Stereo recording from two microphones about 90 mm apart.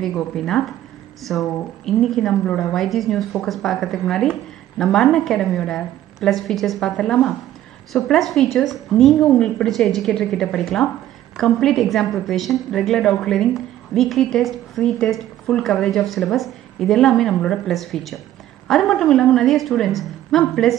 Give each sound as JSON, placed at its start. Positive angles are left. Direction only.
{"t": 0.0, "sound": "a woman's voice", "side_deg": 5}